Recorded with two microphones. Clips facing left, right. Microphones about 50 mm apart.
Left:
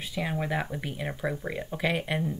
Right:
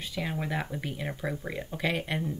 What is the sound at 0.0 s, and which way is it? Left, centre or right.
Speech, centre.